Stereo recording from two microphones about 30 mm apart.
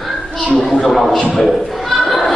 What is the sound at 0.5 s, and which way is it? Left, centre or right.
Speech, centre.